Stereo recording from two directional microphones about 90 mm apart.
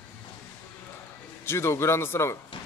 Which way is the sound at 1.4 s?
30° left (ahead or behind).